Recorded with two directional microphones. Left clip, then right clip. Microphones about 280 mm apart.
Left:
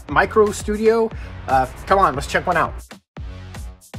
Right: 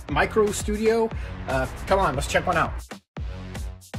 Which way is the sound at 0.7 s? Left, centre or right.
Centre.